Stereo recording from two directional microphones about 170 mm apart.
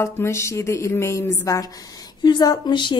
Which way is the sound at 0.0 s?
15° left (ahead or behind).